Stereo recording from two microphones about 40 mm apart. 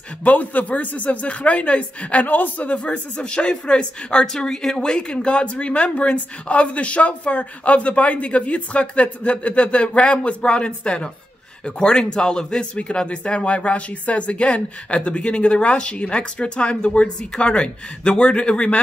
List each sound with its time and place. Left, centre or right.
0.2 s speech: left
2.2 s a man's voice: left
2.9 s speech: left